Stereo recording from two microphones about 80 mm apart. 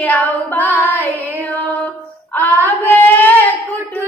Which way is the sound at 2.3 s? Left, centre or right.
Left.